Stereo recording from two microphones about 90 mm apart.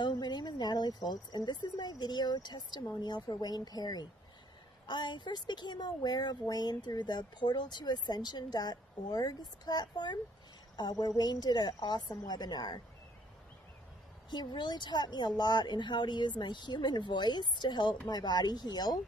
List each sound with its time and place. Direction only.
0.0 s a woman's voice: 50° left (ahead or behind)
14.3 s a woman's voice: 55° left (ahead or behind)